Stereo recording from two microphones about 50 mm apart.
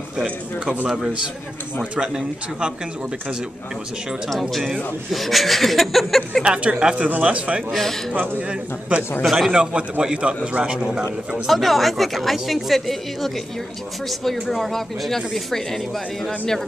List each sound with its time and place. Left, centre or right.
2.0 s a man's voice: centre
4.3 s speech: centre
6.4 s a man's voice: right
7.7 s a man's voice: centre
8.4 s a man's voice: right
9.2 s speech: centre
9.5 s a man's voice: centre
11.4 s speech: centre